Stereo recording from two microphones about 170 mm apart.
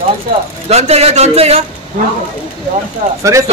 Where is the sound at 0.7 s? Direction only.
40° right (ahead or behind).